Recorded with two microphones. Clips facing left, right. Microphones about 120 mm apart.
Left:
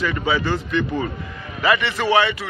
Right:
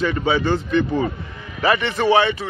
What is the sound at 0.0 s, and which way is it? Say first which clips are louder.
A man's voice: right 2 dB; 30° right (ahead or behind).